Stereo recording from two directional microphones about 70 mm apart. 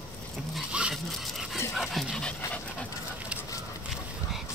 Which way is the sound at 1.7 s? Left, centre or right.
Centre.